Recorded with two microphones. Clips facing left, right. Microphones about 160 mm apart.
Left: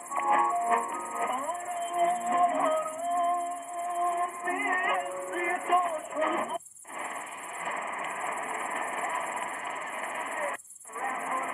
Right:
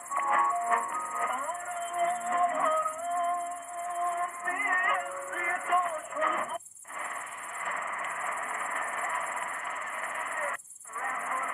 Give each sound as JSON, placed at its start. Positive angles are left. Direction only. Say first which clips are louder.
{"t": 0.1, "sound": "music", "louder": "left 2 dB", "side_deg": 20}
{"t": 7.6, "sound": "vehicle", "louder": "left 2 dB", "side_deg": 20}
{"t": 9.9, "sound": "music", "louder": "left 3 dB", "side_deg": 20}